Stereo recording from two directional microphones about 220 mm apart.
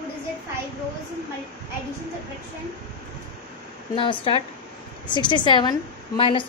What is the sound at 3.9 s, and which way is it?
A woman's voice, 20° left (ahead or behind).